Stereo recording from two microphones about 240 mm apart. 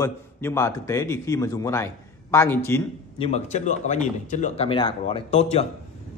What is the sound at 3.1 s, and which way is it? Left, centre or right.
Speech, left.